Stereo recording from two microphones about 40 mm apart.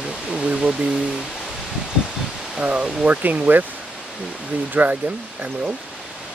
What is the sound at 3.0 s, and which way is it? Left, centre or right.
Speech, right.